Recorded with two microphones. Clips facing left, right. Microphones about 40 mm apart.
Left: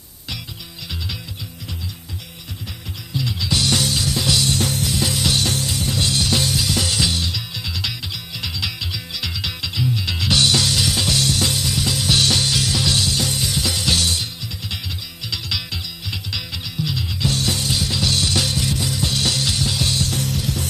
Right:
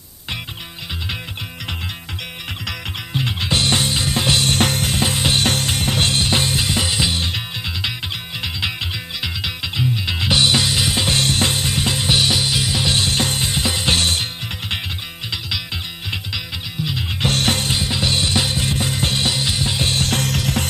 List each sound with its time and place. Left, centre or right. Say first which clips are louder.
3.1 s music: right 1 dB; right
7.2 s music: right 2 dB; right
9.2 s music: right 2 dB; centre; by 12.1 s right
12.1 s music: even; centre
13.0 s music: right 2 dB; right
16.8 s music: even; right
17.2 s music: right 4 dB; right
17.7 s music: right 1 dB; right
18.6 s music: right 2 dB; right
19.2 s music: right 1 dB; right
19.9 s music: right 3 dB; right